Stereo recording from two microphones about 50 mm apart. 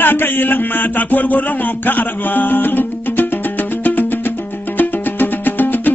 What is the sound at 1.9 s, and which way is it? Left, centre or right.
Music, left.